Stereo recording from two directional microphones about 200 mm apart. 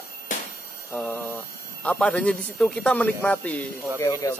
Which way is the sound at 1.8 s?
5° left (ahead or behind).